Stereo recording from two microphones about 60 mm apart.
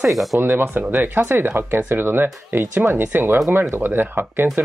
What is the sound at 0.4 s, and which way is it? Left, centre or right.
Speech, right.